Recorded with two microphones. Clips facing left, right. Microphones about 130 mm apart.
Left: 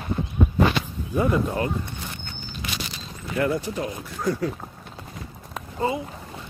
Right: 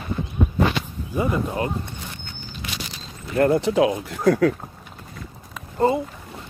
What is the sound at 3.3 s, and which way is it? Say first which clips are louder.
Speech: right 6 dB; 50° right (ahead or behind).